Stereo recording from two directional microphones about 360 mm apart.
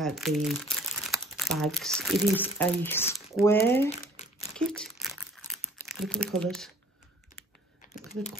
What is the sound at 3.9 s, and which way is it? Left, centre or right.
Crumpling, centre.